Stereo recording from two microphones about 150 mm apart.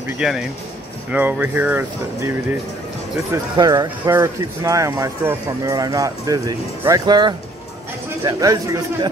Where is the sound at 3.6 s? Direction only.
25° right (ahead or behind).